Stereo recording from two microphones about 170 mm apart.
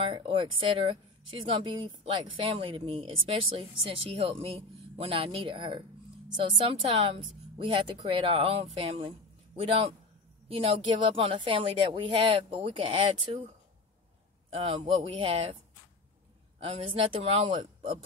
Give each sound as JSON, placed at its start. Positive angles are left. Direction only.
{"t": 0.0, "sound": "speech", "side_deg": -35}
{"t": 14.7, "sound": "speech", "side_deg": -30}
{"t": 16.6, "sound": "speech", "side_deg": -30}